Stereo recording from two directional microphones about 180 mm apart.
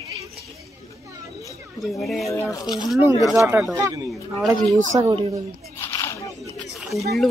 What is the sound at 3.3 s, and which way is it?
Speech, 15° right (ahead or behind).